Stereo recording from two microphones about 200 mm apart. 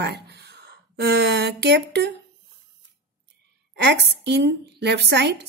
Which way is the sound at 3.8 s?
55° right (ahead or behind).